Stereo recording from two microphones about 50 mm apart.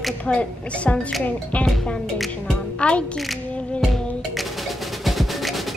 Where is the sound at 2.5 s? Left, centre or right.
Left.